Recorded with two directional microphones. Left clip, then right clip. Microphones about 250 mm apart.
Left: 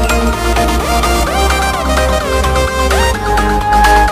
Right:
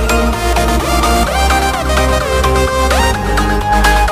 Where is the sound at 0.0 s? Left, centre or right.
Centre.